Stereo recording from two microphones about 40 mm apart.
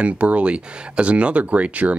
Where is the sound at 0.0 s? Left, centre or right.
Right.